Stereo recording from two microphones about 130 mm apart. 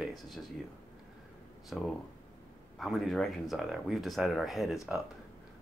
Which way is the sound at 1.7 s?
Centre (ahead or behind).